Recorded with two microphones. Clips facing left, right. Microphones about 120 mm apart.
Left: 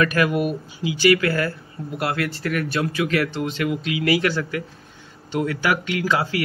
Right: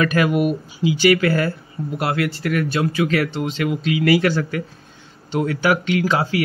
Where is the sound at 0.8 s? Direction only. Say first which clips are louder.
Right 2 dB; 25° right (ahead or behind).